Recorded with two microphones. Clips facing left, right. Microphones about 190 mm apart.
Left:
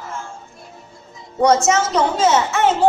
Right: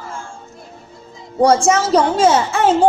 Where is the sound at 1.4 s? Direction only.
30° right (ahead or behind).